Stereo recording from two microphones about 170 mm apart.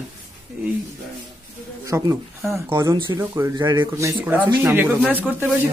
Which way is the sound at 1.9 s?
15° right (ahead or behind).